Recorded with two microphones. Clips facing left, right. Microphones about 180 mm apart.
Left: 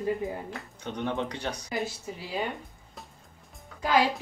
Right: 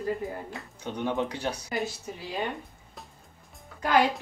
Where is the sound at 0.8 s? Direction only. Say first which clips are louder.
Right 2 dB; 10° right (ahead or behind).